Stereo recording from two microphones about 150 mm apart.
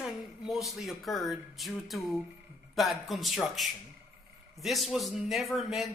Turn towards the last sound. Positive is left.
turn(degrees=0)  # may be behind; listen again after turning